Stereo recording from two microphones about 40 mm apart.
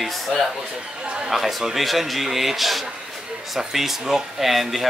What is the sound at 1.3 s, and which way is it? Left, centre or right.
Speech, centre.